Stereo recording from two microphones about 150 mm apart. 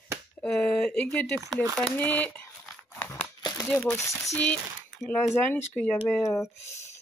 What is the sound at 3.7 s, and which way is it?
Speech, 15° left (ahead or behind).